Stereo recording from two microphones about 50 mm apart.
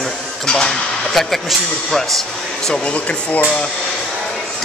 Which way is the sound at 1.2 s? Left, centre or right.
Centre.